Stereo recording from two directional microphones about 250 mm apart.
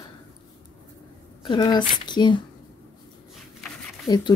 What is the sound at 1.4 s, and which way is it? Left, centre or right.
Speech, centre.